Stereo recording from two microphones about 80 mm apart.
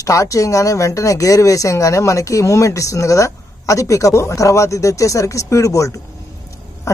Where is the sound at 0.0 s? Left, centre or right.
Left.